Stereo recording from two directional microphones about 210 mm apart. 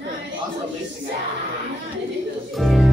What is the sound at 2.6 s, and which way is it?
Speech, centre (ahead or behind).